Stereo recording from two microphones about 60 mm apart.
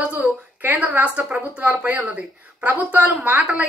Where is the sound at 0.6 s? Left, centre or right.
Right.